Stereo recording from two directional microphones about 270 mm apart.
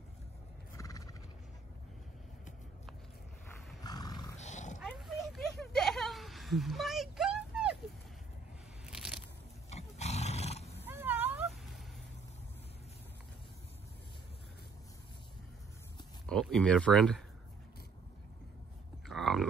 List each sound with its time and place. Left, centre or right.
0.7 s neigh: centre
3.8 s roaring cats: centre
4.4 s roar: left
4.8 s a sound: centre
8.8 s a sound: centre
9.7 s roar: left
10.9 s cat: centre
16.3 s speech: centre
19.0 s a sound: centre